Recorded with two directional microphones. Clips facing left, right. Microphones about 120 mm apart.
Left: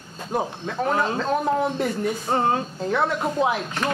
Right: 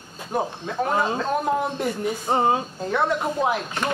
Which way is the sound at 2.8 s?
5° right (ahead or behind).